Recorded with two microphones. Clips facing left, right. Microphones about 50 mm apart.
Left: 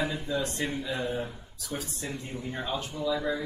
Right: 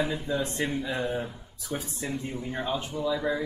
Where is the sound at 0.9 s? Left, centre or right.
Centre.